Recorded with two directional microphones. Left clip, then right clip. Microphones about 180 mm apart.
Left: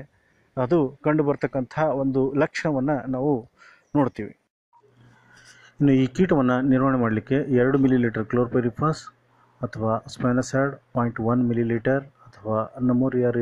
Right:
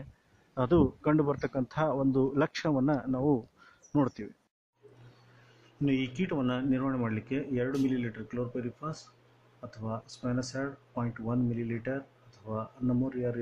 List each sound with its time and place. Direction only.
0.6 s speech: 5° left (ahead or behind)
5.9 s speech: 35° left (ahead or behind)
6.8 s speech: 20° left (ahead or behind)